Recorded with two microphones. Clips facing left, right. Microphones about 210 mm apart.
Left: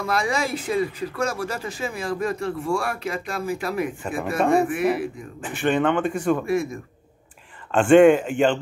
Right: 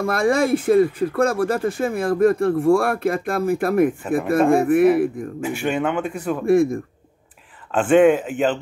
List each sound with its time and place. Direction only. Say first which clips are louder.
0.0 s speech: right 6 dB; 55° right (ahead or behind)
5.4 s speech: left 1 dB; 10° right (ahead or behind)
6.4 s a man's voice: right 8 dB; 55° right (ahead or behind)
7.7 s speech: left 1 dB; 5° right (ahead or behind)